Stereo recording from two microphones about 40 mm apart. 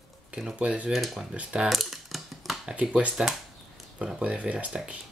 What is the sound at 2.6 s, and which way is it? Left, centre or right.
Speech, right.